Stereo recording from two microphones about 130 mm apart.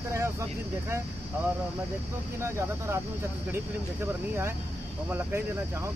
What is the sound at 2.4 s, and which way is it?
Speech, 20° right (ahead or behind).